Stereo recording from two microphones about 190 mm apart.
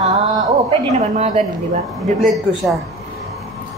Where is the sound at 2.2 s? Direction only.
Centre (ahead or behind).